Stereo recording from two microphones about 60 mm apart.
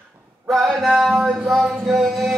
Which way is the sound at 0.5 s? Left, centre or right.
Centre.